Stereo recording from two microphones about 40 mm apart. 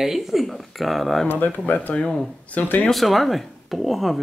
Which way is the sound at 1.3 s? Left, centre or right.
Left.